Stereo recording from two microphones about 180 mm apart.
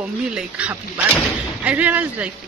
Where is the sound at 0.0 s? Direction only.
5° right (ahead or behind).